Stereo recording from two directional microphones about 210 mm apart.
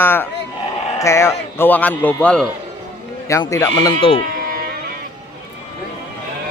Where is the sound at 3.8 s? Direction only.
25° left (ahead or behind).